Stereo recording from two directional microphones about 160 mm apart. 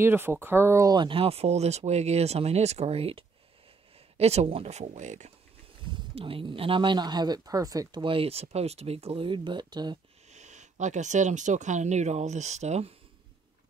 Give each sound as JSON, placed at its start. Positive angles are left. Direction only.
{"t": 0.0, "sound": "speech", "side_deg": -15}
{"t": 5.9, "sound": "speech", "side_deg": -35}
{"t": 10.3, "sound": "speech", "side_deg": -45}